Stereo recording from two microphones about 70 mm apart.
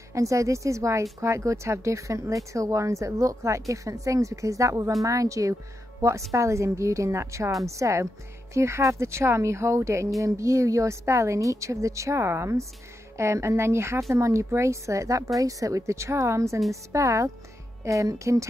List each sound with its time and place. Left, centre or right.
0.1 s a woman's voice: right